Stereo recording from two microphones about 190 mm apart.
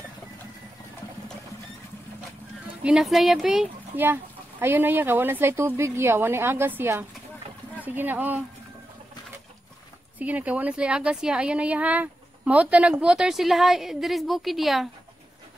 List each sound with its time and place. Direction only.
2.8 s speech: 5° right (ahead or behind)
10.1 s a woman's voice: 10° right (ahead or behind)